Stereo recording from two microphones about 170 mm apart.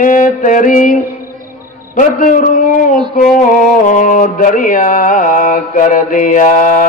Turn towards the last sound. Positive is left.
turn(degrees=50)  # may be behind; listen again after turning